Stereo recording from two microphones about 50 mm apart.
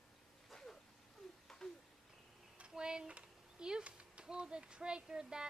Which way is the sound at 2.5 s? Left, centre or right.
Centre.